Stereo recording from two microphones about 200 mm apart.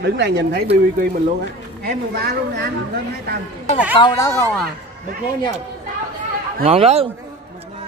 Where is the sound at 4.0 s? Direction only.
20° left (ahead or behind).